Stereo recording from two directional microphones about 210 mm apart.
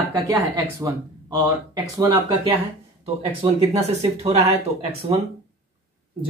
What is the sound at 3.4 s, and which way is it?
Speech, 20° right (ahead or behind).